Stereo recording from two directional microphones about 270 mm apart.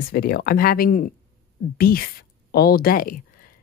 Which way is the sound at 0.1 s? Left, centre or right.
Left.